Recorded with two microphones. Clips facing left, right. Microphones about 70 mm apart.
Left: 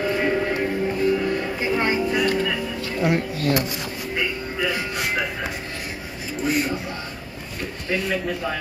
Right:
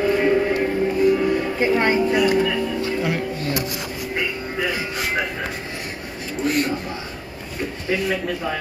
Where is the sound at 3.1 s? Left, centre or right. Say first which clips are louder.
Left 2 dB; right.